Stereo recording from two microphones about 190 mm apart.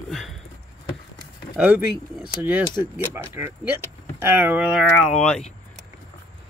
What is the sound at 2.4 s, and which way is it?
Speech, 10° right (ahead or behind).